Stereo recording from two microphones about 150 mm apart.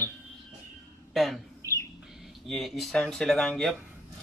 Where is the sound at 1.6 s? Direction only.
20° right (ahead or behind).